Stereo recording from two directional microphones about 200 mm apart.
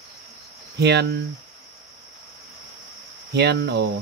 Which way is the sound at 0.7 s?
55° right (ahead or behind).